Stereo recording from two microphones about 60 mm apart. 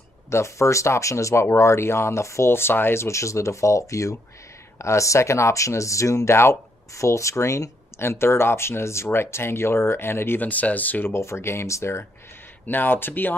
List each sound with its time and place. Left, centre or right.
0.3 s speech: left
10.4 s speech: left
11.1 s speech: left
12.6 s speech: left